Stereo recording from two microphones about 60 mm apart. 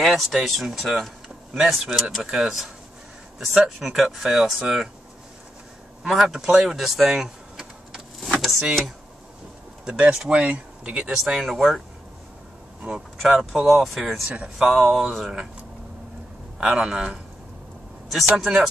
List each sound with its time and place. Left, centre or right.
0.0 s speech: centre
6.0 s a sound: centre
9.9 s speech: centre
12.8 s speech: centre
13.2 s speech: centre
16.7 s speech: centre
18.3 s speech: centre